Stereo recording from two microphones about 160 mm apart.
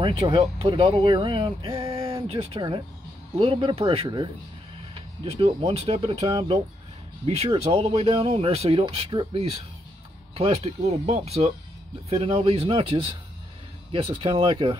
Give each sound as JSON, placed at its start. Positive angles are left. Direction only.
{"t": 0.0, "sound": "speech", "side_deg": -30}